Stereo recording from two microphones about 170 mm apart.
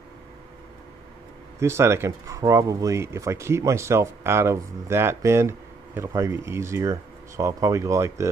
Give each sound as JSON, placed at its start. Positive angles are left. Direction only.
{"t": 1.6, "sound": "speech", "side_deg": -15}